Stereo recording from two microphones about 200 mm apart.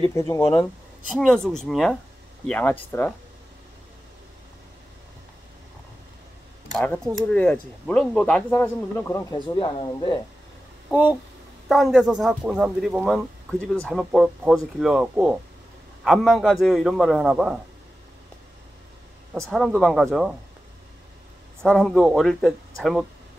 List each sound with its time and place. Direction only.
0.0 s a man's voice: 15° left (ahead or behind)
1.1 s a man's voice: centre (ahead or behind)
6.7 s a man's voice: 5° left (ahead or behind)
9.6 s speech: 25° left (ahead or behind)
10.9 s speech: 10° right (ahead or behind)
19.3 s speech: centre (ahead or behind)
21.6 s speech: centre (ahead or behind)